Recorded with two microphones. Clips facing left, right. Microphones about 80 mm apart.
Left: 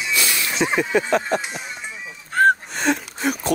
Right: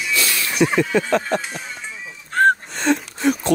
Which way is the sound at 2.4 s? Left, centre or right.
Centre.